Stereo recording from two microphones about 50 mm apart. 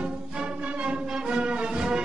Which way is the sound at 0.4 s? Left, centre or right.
Centre.